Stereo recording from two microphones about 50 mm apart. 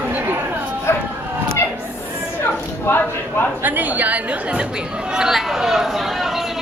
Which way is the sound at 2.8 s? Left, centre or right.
Left.